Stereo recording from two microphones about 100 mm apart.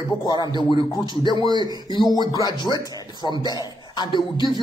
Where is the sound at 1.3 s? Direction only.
45° right (ahead or behind).